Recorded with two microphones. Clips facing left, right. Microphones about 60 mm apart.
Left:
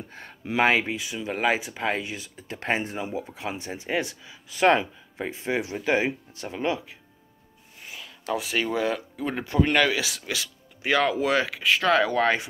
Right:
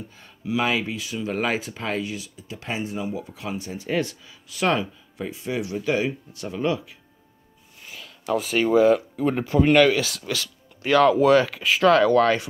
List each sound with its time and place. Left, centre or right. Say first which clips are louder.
0.1 s speech: right 3 dB; left
1.1 s speech: even; centre
1.9 s speech: even; left
4.6 s speech: left 3 dB; left
8.3 s speech: right 6 dB; centre
12.0 s speech: right 5 dB; centre